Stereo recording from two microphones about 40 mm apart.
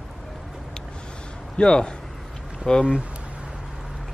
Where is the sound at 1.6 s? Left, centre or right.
Left.